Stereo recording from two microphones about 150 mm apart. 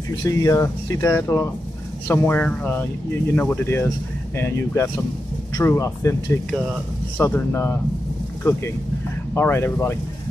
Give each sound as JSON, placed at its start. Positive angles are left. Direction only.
{"t": 0.2, "sound": "speech", "side_deg": 20}
{"t": 9.3, "sound": "speech", "side_deg": 15}